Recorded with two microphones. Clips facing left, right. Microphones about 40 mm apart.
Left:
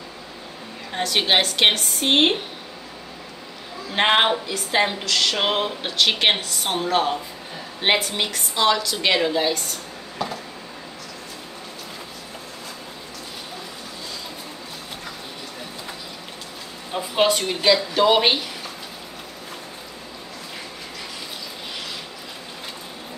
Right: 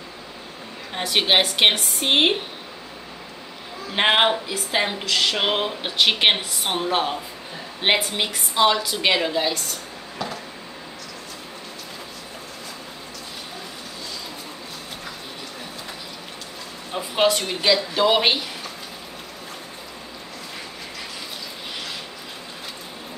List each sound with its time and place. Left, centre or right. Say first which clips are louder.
0.9 s a woman's voice: even; centre
3.9 s a woman's voice: even; centre
8.9 s speech: left 1 dB; centre
10.1 s a sound: left 2 dB; centre
16.9 s speech: even; centre